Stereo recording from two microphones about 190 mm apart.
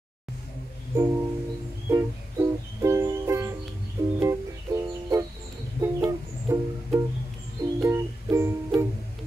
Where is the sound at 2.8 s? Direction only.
15° right (ahead or behind).